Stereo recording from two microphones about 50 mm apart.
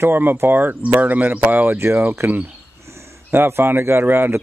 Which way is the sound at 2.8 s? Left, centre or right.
Right.